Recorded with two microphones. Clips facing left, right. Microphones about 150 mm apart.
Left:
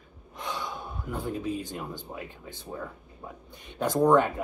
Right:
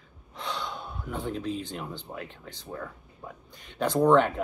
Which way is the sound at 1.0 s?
5° left (ahead or behind).